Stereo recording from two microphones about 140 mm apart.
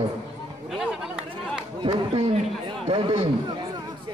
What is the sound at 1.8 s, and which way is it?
Speech, 35° right (ahead or behind).